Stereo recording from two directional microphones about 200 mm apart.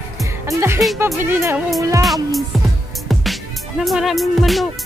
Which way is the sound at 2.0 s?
Centre (ahead or behind).